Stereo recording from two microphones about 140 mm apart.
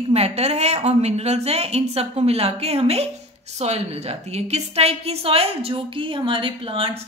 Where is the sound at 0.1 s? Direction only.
50° right (ahead or behind).